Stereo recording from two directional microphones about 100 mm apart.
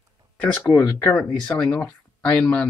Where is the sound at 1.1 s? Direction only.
10° left (ahead or behind).